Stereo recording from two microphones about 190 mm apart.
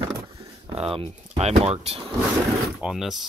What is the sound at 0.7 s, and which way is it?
Speech, 30° right (ahead or behind).